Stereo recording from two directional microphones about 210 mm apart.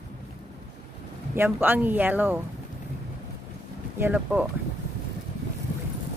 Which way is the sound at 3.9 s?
10° right (ahead or behind).